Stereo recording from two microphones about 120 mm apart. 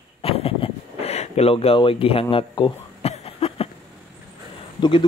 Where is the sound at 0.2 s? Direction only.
55° left (ahead or behind).